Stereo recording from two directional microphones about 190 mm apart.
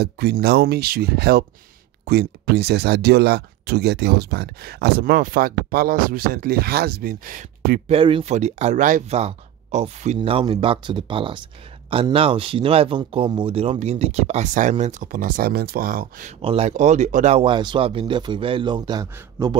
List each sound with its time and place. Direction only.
0.0 s speech: 60° right (ahead or behind)
7.9 s speech: 30° right (ahead or behind)